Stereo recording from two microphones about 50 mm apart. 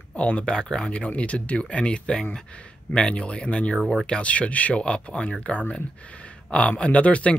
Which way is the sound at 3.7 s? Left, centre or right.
Centre.